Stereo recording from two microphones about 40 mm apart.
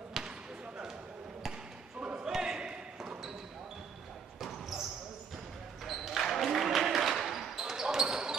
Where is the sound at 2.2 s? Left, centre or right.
Centre.